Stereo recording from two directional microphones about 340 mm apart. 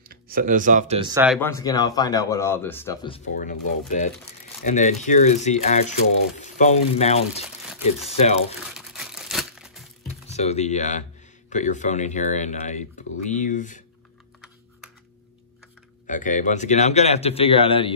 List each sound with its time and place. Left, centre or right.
0.1 s speech: right
1.1 s speech: centre
3.3 s speech: left
8.7 s crumpling: centre
10.2 s speech: centre
13.0 s a sound: left
13.3 s speech: left
16.1 s speech: left